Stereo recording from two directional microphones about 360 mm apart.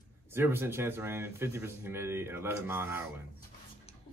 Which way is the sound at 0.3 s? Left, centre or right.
Centre.